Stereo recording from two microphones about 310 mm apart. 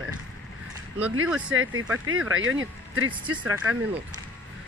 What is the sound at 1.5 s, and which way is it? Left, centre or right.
Speech, right.